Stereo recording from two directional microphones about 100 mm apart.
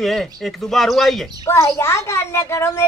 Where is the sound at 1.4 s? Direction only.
30° left (ahead or behind).